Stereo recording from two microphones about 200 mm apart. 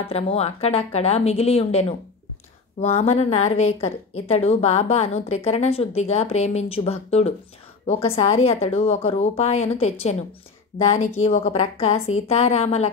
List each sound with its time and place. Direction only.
0.0 s a woman's voice: 30° left (ahead or behind)
11.2 s a woman's voice: 30° left (ahead or behind)